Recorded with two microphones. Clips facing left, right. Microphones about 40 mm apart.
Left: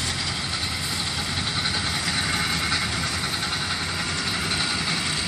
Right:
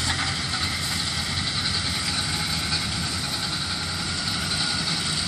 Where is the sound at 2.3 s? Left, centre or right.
Left.